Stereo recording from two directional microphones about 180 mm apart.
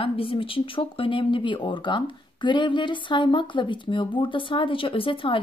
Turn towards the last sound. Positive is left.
turn(degrees=30)  # may be behind; listen again after turning